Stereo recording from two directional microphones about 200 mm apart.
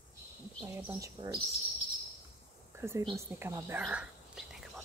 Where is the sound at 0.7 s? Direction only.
20° right (ahead or behind).